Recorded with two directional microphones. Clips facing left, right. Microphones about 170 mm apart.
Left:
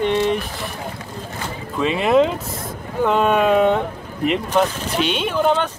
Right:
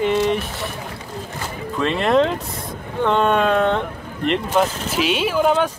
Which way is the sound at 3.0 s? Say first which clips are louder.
Left 1 dB; 5° left (ahead or behind).